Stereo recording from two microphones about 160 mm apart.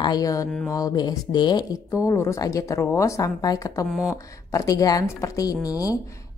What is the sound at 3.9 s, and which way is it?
Speech, 5° right (ahead or behind).